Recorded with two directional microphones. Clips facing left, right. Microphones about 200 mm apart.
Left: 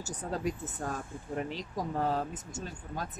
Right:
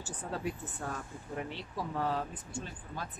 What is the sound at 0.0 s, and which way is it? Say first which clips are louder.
Speech: left 3 dB; 40° left (ahead or behind).